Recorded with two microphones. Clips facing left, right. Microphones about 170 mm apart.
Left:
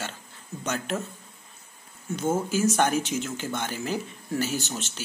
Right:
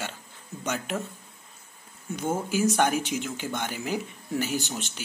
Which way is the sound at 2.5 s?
10° right (ahead or behind).